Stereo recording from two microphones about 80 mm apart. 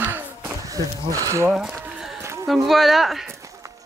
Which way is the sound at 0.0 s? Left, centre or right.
Right.